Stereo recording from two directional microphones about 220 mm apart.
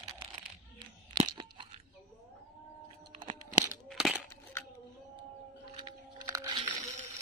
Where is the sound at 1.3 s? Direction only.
20° right (ahead or behind).